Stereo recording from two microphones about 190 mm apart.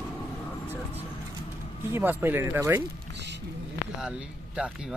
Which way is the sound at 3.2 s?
65° right (ahead or behind).